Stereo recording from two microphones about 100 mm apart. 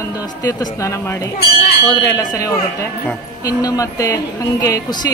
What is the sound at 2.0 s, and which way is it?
A woman's voice, 35° left (ahead or behind).